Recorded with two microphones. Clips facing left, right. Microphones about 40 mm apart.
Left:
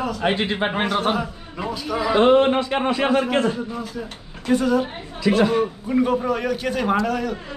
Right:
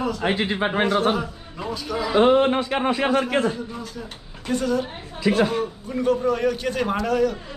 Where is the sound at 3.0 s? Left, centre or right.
Centre.